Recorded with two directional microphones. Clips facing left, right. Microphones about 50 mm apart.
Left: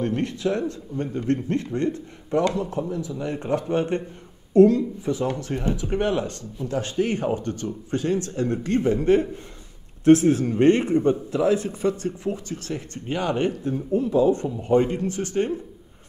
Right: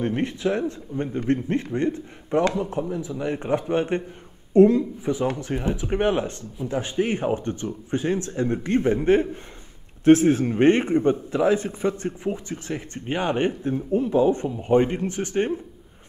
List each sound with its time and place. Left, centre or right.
0.0 s a man's voice: right